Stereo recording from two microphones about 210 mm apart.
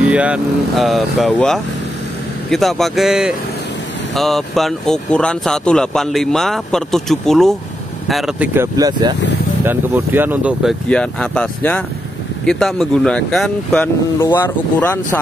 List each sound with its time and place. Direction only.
0.1 s speech: 5° right (ahead or behind)